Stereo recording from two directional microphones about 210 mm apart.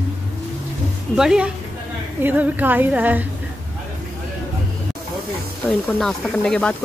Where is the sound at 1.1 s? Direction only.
5° right (ahead or behind).